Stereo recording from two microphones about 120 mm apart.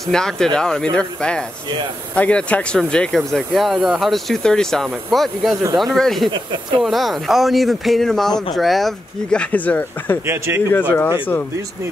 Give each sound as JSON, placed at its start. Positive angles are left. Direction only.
{"t": 0.0, "sound": "speech", "side_deg": 5}
{"t": 10.2, "sound": "speech", "side_deg": -20}
{"t": 10.7, "sound": "speech", "side_deg": 15}